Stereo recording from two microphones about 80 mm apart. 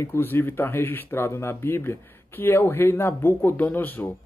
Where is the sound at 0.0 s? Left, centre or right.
Left.